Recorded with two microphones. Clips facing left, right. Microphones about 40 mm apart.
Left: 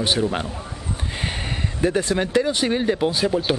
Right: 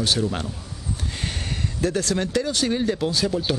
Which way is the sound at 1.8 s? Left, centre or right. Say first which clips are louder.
Left 3 dB; left.